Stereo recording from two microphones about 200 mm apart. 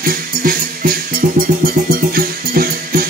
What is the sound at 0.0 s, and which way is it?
Music, 45° right (ahead or behind).